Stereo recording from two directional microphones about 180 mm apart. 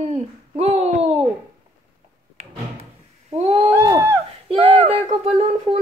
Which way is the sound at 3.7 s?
15° right (ahead or behind).